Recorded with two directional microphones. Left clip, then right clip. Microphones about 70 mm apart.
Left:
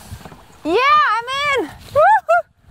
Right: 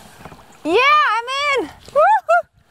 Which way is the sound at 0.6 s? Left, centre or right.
Centre.